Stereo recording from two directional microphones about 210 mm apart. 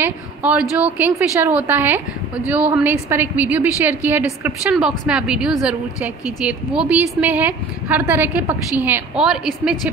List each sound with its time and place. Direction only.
0.0 s a woman's voice: 10° right (ahead or behind)